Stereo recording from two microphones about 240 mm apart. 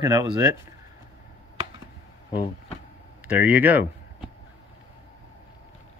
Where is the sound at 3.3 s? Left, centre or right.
Centre.